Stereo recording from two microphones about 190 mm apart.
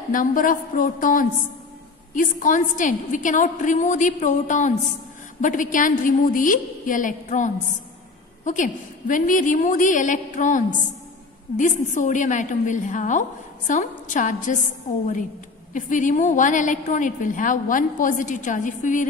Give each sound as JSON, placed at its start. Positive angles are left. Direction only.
{"t": 0.1, "sound": "a woman's voice", "side_deg": 45}